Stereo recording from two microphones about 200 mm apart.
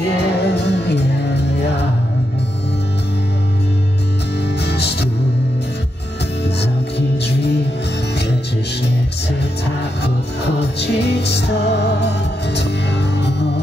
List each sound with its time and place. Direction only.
0.2 s music: 55° left (ahead or behind)
4.6 s music: 55° left (ahead or behind)
10.0 s music: 55° left (ahead or behind)